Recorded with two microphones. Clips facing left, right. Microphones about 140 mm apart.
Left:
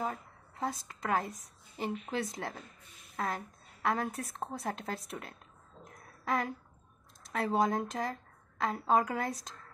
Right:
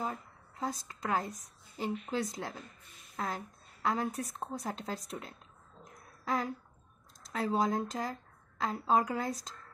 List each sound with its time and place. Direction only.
0.0 s a woman's voice: 50° left (ahead or behind)
3.8 s a woman's voice: 60° left (ahead or behind)